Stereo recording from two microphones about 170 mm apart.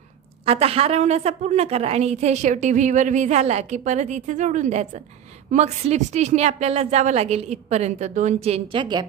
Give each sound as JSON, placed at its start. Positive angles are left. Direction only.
{"t": 0.5, "sound": "a woman's voice", "side_deg": -35}